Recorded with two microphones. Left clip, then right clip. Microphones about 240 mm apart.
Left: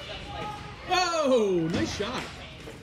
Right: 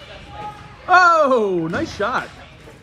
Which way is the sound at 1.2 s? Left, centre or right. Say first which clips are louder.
Right 7 dB; right.